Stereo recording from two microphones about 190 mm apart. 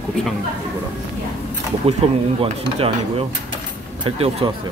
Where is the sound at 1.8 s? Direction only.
30° right (ahead or behind).